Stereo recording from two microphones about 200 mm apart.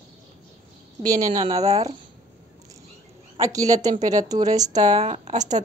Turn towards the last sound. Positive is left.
turn(degrees=-35)  # may be behind; listen again after turning